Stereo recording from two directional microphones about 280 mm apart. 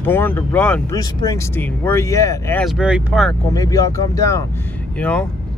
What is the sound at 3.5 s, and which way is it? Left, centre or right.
Speech, centre.